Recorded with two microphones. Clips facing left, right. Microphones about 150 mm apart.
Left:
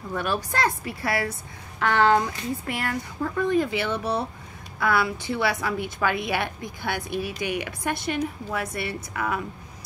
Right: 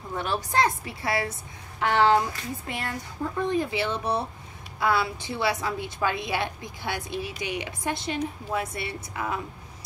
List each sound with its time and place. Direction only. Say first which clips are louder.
0.1 s a woman's voice: even; 20° right (ahead or behind)